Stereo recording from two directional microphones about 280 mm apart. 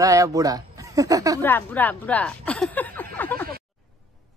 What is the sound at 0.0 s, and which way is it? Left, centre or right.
Speech, centre.